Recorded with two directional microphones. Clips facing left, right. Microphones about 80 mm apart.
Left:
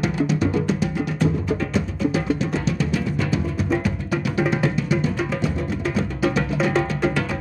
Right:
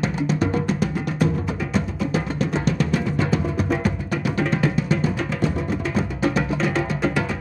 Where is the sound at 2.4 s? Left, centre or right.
Right.